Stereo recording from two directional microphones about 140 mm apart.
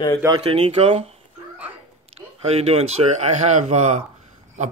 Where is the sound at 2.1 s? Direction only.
50° right (ahead or behind).